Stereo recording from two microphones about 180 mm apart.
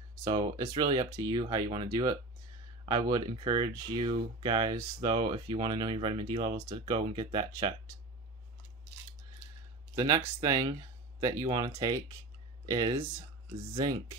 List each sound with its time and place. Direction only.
0.2 s speech: 20° right (ahead or behind)
9.9 s speech: 20° right (ahead or behind)